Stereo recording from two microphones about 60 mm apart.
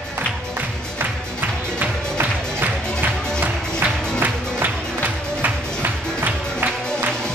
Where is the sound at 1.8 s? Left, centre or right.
Right.